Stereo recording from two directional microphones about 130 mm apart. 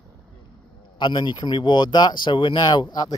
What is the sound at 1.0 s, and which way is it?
Speech, 35° left (ahead or behind).